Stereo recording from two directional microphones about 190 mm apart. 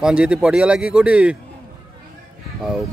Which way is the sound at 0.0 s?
5° right (ahead or behind).